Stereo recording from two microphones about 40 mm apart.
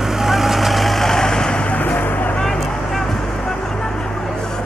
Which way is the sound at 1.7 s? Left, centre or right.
Left.